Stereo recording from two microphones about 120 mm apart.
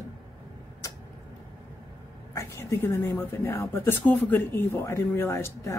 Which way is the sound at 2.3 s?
20° left (ahead or behind).